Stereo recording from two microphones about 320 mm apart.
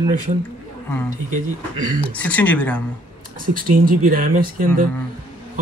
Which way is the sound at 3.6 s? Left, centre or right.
Right.